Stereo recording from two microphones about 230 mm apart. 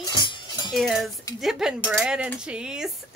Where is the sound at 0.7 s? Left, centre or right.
Centre.